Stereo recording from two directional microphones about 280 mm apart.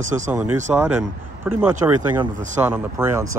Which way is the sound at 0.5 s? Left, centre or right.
Centre.